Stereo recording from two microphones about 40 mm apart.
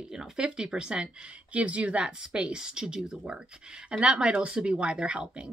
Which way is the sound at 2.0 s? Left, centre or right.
Right.